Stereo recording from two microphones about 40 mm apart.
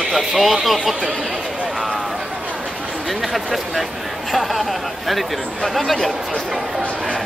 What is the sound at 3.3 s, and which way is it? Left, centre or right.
Speech, centre.